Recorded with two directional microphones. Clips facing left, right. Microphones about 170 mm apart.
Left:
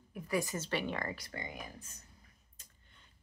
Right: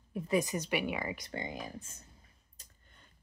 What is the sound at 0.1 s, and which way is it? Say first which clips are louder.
A woman's voice: right 4 dB; 20° right (ahead or behind).